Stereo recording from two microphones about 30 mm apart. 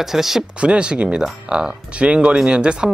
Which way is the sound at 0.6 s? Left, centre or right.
Right.